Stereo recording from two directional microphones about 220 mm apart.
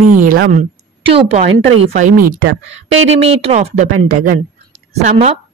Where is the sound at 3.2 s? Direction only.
25° right (ahead or behind).